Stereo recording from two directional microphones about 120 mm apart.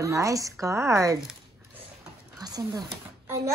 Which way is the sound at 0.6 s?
25° right (ahead or behind).